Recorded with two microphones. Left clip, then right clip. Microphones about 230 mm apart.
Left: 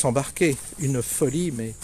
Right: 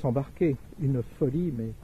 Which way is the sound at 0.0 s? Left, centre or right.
Centre.